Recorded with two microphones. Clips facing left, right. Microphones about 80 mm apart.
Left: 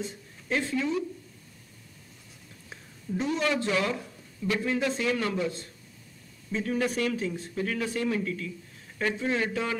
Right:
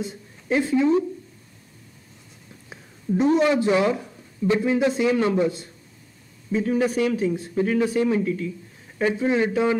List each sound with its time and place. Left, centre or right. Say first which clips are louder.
0.0 s a woman's voice: right 5 dB; centre
2.7 s a sound: right 9 dB; centre
3.4 s a man's voice: right 8 dB; right
6.5 s speech: right 7 dB; centre